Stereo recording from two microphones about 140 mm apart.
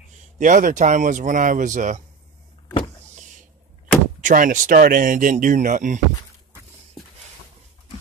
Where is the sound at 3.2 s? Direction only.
60° right (ahead or behind).